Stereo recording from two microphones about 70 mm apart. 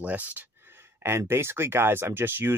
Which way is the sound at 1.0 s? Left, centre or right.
Right.